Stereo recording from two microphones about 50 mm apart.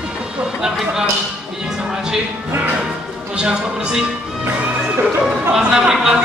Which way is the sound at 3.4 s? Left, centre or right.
Centre.